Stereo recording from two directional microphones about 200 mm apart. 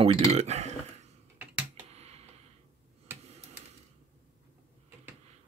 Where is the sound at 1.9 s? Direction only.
30° right (ahead or behind).